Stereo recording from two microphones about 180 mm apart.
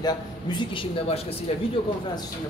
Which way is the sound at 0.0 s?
25° left (ahead or behind).